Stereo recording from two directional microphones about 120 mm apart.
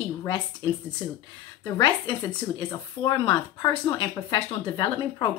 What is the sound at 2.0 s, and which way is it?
Speech, 40° left (ahead or behind).